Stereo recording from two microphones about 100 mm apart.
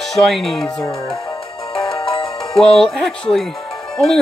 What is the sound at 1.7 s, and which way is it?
Music, 60° left (ahead or behind).